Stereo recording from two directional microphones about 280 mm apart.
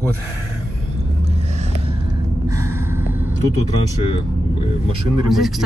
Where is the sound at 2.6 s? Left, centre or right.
Centre.